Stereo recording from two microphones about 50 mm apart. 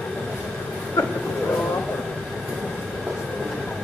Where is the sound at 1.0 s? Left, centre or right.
Left.